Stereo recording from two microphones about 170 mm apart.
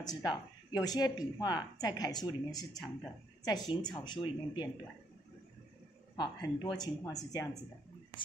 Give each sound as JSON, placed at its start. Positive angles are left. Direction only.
{"t": 0.0, "sound": "speech", "side_deg": 25}
{"t": 6.1, "sound": "speech", "side_deg": 25}